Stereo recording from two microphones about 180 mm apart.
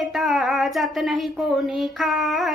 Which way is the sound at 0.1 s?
Centre (ahead or behind).